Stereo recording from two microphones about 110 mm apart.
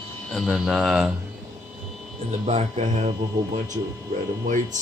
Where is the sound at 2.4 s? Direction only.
90° right.